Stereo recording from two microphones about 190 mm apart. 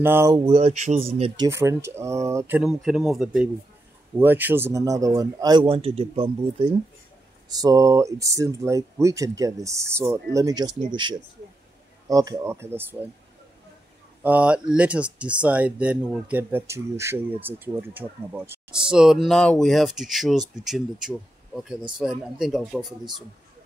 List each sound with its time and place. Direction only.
0.0 s speech: 10° right (ahead or behind)
0.5 s a man's voice: 35° right (ahead or behind); by 12.9 s 10° right (ahead or behind)
14.2 s speech: 5° right (ahead or behind)